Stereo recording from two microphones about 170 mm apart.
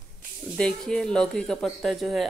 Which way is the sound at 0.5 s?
5° left (ahead or behind).